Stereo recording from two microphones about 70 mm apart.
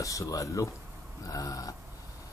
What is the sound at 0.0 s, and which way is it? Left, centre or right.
A man's voice, left.